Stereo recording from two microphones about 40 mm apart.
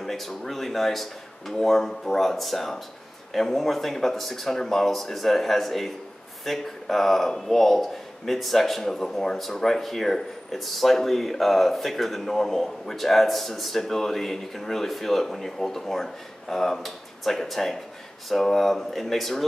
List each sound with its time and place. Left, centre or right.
0.0 s speech: centre